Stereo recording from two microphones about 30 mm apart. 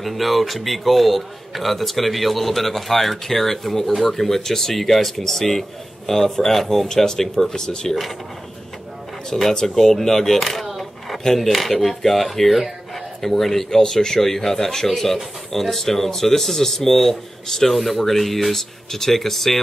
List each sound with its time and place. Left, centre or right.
0.0 s speech: centre
6.9 s speech: centre
9.3 s speech: centre
10.7 s a sound: centre
11.3 s speech: centre
13.2 s speech: centre
17.7 s speech: centre